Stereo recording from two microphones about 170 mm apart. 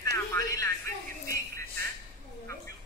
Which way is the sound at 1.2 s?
15° left (ahead or behind).